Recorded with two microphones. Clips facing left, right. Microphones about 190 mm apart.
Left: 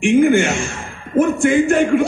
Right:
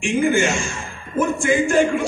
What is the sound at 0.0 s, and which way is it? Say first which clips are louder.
A man's voice: left 6 dB; 60° left (ahead or behind).